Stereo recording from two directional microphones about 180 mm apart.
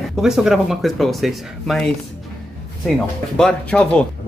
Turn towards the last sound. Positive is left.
turn(degrees=5)  # may be behind; listen again after turning